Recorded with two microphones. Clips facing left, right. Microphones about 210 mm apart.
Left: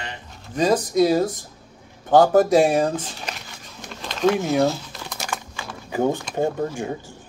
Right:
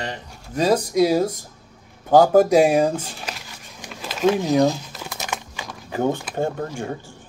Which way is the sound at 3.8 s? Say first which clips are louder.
Even; 5° right (ahead or behind).